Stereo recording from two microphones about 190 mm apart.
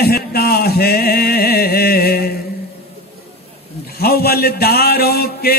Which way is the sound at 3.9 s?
55° left (ahead or behind).